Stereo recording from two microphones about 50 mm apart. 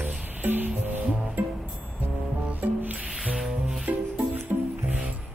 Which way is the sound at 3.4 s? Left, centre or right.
Centre.